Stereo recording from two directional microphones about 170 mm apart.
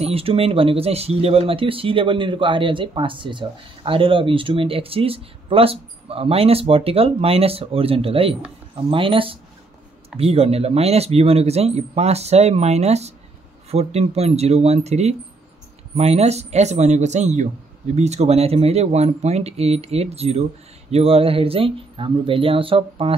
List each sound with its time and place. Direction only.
0.0 s speech: 35° right (ahead or behind)